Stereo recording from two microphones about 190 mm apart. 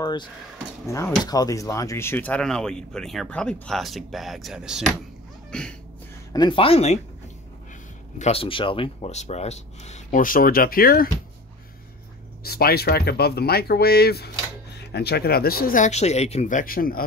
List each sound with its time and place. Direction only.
0.0 s speech: 25° left (ahead or behind); by 5.8 s 5° left (ahead or behind)
6.3 s speech: 25° left (ahead or behind)
8.2 s speech: 30° left (ahead or behind); by 11.1 s 50° left (ahead or behind)
12.4 s speech: 55° left (ahead or behind)